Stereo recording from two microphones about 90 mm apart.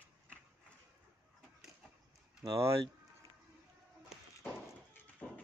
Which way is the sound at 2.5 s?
30° right (ahead or behind).